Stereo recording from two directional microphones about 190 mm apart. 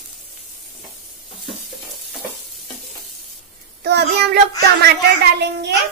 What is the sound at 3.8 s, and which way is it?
Speech, 60° right (ahead or behind).